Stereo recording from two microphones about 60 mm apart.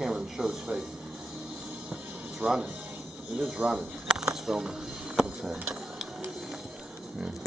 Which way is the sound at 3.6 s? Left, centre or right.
Centre.